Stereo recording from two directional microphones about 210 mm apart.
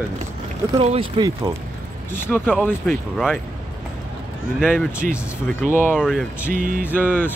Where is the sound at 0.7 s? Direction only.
25° right (ahead or behind).